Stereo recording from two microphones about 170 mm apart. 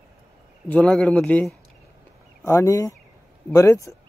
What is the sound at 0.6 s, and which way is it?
Speech, 5° left (ahead or behind).